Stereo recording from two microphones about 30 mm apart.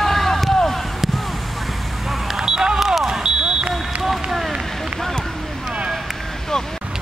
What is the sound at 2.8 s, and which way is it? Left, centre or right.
Smoke detector, centre.